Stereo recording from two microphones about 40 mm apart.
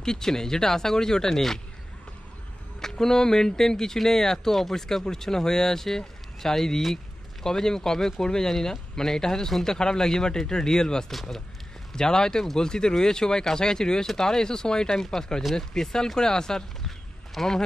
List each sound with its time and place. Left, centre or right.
0.0 s speech: centre
2.8 s speech: centre
11.9 s speech: centre